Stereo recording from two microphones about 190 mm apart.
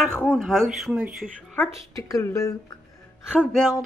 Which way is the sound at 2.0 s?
15° left (ahead or behind).